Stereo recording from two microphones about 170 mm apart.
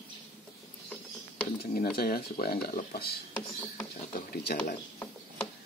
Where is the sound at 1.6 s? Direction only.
60° left (ahead or behind).